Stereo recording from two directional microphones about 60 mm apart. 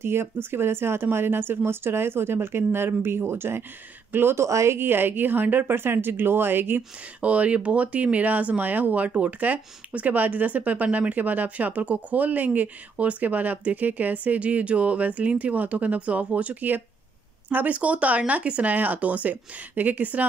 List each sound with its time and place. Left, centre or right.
0.0 s speech: right
4.5 s speech: right
4.7 s speech: right
7.2 s speech: right